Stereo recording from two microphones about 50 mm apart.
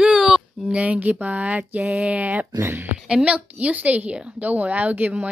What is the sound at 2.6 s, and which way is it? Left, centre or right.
Speech, right.